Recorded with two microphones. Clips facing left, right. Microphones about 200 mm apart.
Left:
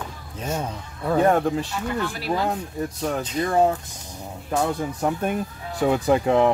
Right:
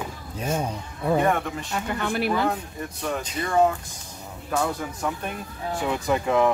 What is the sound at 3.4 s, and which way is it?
Speech, 40° left (ahead or behind).